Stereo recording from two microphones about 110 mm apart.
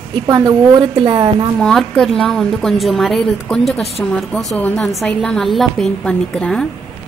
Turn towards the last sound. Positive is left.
turn(degrees=5)  # may be behind; listen again after turning